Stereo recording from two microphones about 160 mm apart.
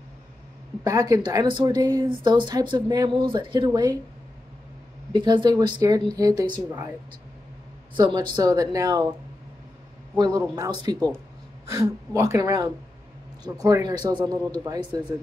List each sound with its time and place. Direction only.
0.8 s speech: 20° right (ahead or behind)
5.1 s speech: 30° right (ahead or behind)
7.9 s speech: 25° right (ahead or behind)
10.1 s speech: 25° right (ahead or behind)